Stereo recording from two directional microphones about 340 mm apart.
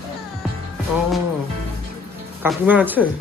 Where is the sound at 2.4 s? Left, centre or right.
Centre.